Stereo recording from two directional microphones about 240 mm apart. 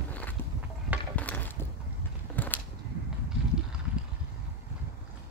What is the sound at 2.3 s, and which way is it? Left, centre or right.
Creak, centre.